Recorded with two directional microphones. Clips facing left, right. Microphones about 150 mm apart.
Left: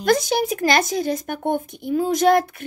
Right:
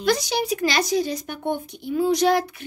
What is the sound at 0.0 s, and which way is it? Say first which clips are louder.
Speech: left 3 dB; 50° left (ahead or behind).